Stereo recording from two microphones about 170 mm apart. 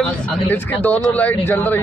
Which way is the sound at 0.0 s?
10° left (ahead or behind).